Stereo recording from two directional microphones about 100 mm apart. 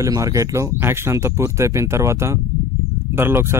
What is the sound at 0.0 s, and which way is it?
Speech, 35° right (ahead or behind).